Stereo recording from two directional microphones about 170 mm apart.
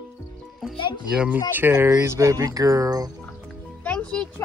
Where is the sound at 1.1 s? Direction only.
5° right (ahead or behind); by 3.1 s 20° right (ahead or behind).